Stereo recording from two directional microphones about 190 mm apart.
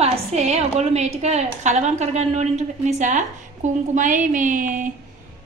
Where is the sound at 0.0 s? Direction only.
35° right (ahead or behind).